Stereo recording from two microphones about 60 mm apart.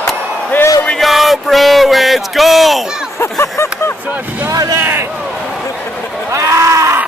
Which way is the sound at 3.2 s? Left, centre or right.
Left.